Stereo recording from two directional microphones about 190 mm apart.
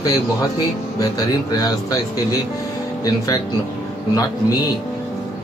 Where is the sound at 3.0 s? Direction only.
20° left (ahead or behind).